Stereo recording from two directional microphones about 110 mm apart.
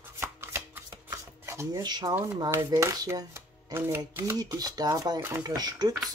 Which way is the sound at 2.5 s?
25° right (ahead or behind).